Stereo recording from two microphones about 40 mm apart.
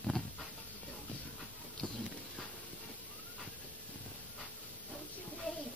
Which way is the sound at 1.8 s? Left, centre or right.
Left.